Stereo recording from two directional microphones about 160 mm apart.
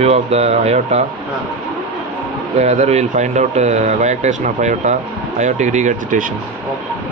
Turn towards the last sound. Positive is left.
turn(degrees=-50)  # may be behind; listen again after turning